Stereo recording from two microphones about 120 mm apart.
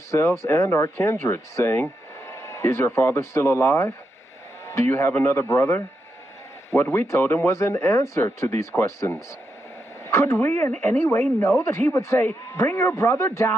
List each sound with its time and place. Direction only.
0.1 s speech: 25° left (ahead or behind)